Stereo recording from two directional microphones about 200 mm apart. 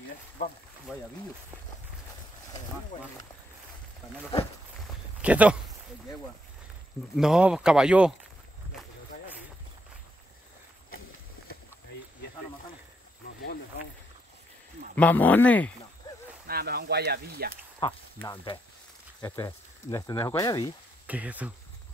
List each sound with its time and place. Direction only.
0.9 s speech: centre (ahead or behind)
5.2 s speech: 5° right (ahead or behind)
7.2 s speech: 5° right (ahead or behind)
15.0 s speech: 10° left (ahead or behind)
16.0 s snake: 20° left (ahead or behind)
16.4 s speech: 50° right (ahead or behind)
17.7 s speech: 20° left (ahead or behind)
21.1 s speech: 5° right (ahead or behind)